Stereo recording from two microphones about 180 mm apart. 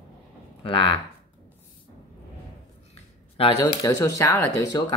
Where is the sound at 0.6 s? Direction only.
30° left (ahead or behind).